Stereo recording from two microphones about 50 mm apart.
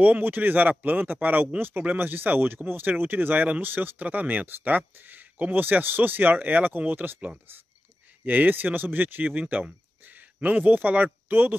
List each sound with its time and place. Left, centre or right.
0.0 s a man's voice: right